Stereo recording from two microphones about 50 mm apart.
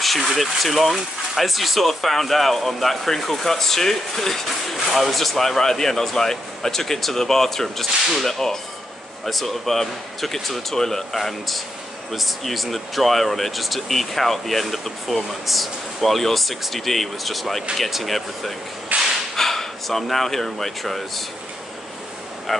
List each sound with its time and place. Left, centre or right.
0.0 s speech: centre
18.9 s whip: right
19.3 s speech: centre
22.5 s speech: centre